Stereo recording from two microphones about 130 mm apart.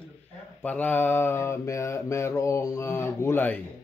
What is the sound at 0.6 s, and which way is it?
Mantra, 10° left (ahead or behind).